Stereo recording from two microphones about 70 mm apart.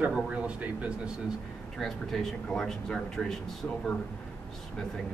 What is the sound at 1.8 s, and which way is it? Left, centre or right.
Speech, centre.